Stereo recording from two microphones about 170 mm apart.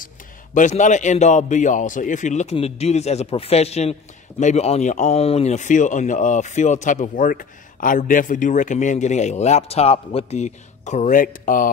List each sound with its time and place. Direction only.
0.6 s speech: 45° left (ahead or behind)